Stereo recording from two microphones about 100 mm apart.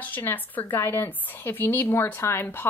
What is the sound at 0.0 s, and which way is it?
Speech, 20° left (ahead or behind).